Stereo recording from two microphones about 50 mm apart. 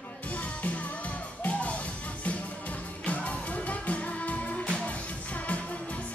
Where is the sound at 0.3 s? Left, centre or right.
Left.